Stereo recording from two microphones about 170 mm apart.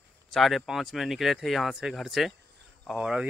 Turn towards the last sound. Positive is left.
turn(degrees=-5)  # may be behind; listen again after turning